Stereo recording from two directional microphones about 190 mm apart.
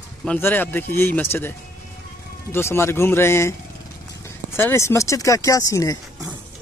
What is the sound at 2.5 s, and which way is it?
Speech, 15° left (ahead or behind).